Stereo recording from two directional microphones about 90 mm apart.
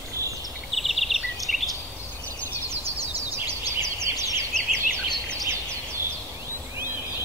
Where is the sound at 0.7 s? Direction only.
Centre (ahead or behind).